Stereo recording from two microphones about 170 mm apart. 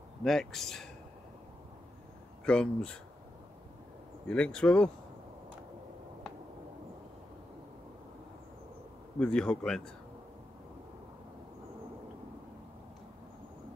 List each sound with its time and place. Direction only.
0.2 s speech: centre (ahead or behind)
2.4 s speech: 5° left (ahead or behind)
4.3 s speech: 5° left (ahead or behind)
9.2 s speech: 5° left (ahead or behind)